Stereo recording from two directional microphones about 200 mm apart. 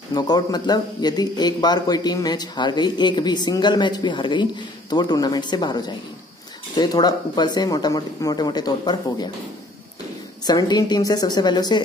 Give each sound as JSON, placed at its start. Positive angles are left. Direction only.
{"t": 0.1, "sound": "speech", "side_deg": 20}
{"t": 10.4, "sound": "speech", "side_deg": 20}